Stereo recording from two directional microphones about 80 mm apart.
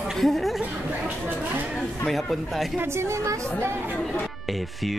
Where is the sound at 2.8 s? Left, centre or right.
Right.